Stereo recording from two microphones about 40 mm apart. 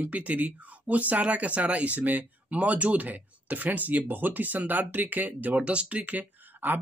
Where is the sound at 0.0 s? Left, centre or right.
Right.